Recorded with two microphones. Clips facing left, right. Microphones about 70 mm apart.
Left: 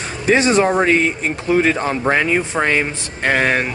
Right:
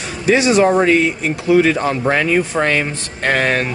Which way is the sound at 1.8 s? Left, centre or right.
Centre.